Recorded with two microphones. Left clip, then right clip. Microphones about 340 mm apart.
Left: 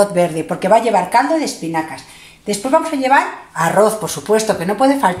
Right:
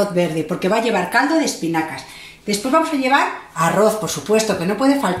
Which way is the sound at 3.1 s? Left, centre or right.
Left.